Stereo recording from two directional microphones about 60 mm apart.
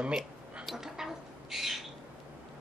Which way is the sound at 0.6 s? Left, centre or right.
Centre.